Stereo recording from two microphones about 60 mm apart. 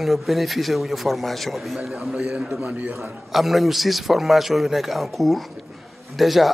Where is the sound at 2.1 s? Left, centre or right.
Centre.